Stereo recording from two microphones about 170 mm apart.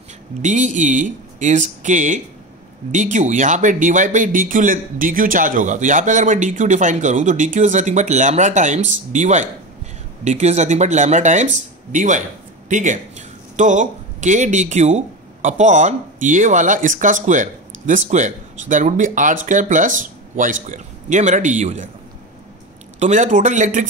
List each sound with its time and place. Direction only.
0.4 s speech: 45° right (ahead or behind)
22.9 s speech: 45° right (ahead or behind)